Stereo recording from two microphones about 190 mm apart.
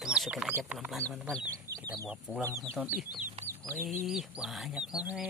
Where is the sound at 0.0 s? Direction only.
5° right (ahead or behind).